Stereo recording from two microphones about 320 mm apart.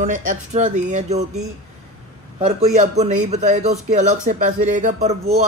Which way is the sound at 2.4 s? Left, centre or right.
Right.